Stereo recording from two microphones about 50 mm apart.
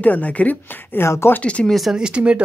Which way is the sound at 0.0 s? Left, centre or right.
Left.